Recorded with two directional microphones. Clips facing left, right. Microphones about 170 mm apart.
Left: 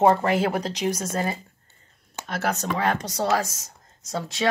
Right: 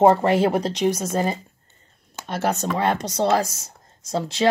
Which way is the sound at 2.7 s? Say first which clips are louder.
Right 2 dB; 30° right (ahead or behind).